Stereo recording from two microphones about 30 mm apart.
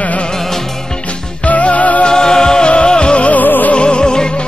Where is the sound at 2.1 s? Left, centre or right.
Left.